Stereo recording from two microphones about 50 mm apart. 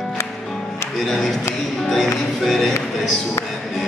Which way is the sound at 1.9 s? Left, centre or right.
Centre.